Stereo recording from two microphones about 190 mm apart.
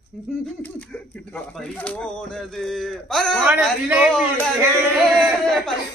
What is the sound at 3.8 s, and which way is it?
Speech, 10° right (ahead or behind).